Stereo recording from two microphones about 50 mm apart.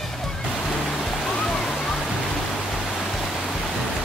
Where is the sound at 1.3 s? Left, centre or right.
Centre.